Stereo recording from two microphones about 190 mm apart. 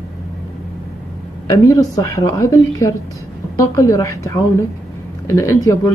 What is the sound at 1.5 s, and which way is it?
Speech, 20° left (ahead or behind).